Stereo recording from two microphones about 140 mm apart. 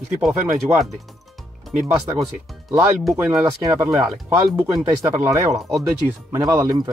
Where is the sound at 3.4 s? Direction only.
20° right (ahead or behind).